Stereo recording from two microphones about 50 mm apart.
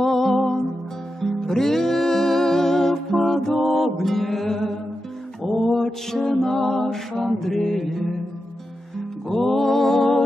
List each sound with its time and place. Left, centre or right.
0.0 s music: centre
5.4 s a sound: centre
7.3 s mantra: centre
9.3 s music: centre